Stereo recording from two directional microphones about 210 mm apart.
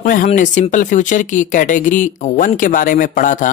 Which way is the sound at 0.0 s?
40° left (ahead or behind).